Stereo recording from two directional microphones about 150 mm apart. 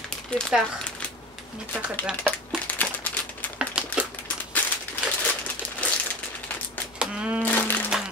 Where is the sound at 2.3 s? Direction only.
10° left (ahead or behind).